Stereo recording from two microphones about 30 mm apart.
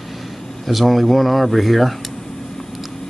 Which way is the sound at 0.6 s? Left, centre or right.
Centre.